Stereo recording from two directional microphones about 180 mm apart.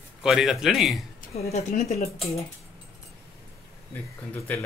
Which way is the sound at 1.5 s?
35° left (ahead or behind).